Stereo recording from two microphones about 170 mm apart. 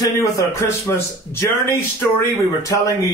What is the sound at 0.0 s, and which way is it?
A man's voice, 15° left (ahead or behind).